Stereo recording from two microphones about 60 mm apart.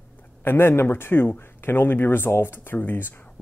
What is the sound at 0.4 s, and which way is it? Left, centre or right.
Speech, left.